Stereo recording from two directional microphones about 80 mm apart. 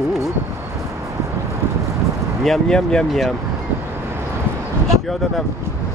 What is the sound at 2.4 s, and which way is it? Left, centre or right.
Speech, centre.